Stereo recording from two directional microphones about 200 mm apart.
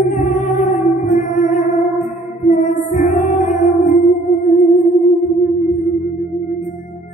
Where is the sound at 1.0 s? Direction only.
40° left (ahead or behind).